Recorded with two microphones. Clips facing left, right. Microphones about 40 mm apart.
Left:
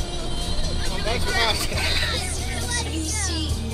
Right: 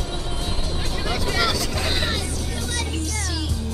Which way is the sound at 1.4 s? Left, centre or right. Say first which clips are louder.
Right 1 dB; left.